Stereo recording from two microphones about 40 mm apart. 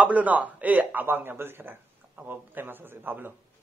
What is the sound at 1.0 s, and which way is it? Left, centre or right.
A man's voice, right.